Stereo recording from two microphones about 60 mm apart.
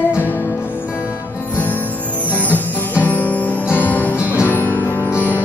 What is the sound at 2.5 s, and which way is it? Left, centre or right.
Music, left.